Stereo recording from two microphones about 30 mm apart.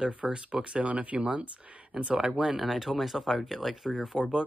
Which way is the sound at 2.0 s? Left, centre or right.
Right.